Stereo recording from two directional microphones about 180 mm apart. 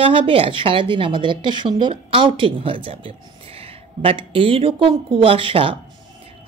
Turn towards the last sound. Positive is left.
turn(degrees=-30)  # may be behind; listen again after turning